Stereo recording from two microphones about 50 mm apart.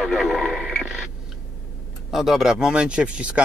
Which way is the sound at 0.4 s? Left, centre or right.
Centre.